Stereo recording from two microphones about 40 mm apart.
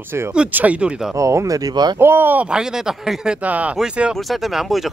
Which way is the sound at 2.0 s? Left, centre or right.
Right.